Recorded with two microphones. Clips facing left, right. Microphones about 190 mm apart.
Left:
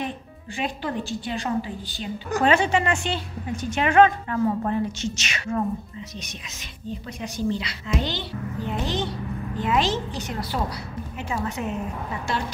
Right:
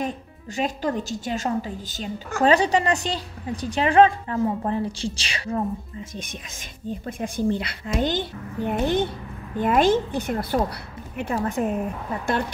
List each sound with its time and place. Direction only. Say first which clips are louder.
0.6 s a woman's voice: right 3 dB; 40° right (ahead or behind)
6.9 s a woman's voice: right 3 dB; 50° right (ahead or behind)